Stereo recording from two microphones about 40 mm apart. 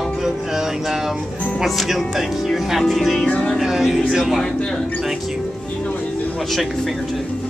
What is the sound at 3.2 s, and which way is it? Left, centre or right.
Music, left.